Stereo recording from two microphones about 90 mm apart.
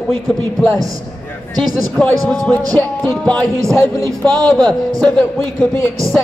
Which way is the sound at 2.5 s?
20° left (ahead or behind).